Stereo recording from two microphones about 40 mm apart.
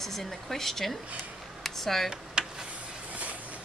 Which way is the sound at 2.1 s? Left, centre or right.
Centre.